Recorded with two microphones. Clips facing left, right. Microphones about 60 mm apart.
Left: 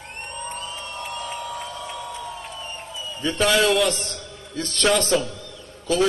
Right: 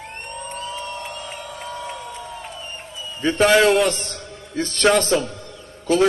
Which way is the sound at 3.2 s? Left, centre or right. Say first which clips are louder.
Right 5 dB; right.